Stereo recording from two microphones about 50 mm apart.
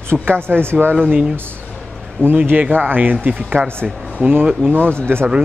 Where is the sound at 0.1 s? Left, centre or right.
Right.